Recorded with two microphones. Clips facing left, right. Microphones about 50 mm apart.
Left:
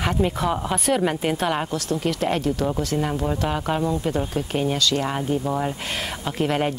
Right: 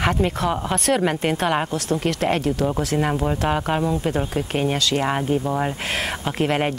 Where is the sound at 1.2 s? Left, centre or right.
Centre.